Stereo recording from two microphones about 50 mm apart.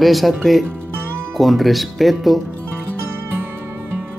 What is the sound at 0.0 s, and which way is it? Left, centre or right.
Speech, centre.